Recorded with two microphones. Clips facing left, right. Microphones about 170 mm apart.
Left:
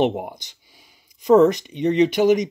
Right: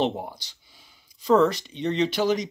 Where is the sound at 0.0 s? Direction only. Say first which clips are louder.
Left 5 dB; 15° left (ahead or behind).